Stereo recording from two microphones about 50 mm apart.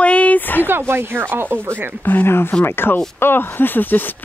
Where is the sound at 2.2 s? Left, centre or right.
Left.